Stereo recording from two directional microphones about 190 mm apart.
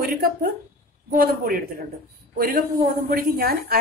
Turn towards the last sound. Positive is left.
turn(degrees=-55)  # may be behind; listen again after turning